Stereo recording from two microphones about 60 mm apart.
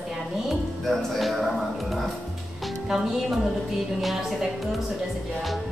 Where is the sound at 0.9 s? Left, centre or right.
Centre.